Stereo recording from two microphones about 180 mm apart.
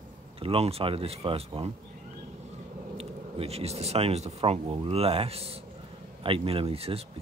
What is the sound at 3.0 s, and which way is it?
Speech, 35° right (ahead or behind).